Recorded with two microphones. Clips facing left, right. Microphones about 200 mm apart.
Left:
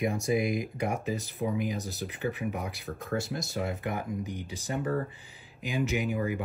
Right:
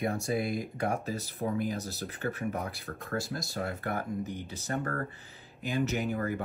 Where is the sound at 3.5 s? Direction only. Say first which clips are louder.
Left 1 dB; 20° left (ahead or behind).